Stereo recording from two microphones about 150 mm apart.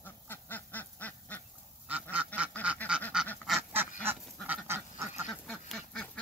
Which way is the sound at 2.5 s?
10° left (ahead or behind).